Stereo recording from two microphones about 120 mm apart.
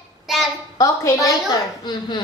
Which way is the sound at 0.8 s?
30° left (ahead or behind).